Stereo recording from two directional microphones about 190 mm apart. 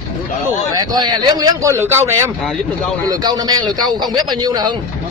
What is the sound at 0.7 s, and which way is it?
A man's voice, 20° right (ahead or behind).